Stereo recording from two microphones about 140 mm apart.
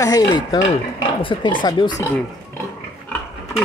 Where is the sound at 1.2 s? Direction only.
35° left (ahead or behind).